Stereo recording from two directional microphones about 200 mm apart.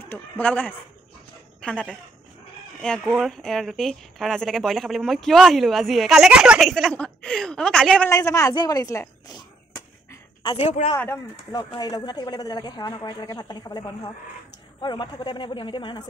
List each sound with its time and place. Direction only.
0.0 s a woman's voice: 10° left (ahead or behind)
8.1 s a woman's voice: 15° left (ahead or behind)
10.4 s speech: 30° left (ahead or behind)
11.0 s a woman's voice: 10° left (ahead or behind)
11.7 s a woman's voice: 25° left (ahead or behind)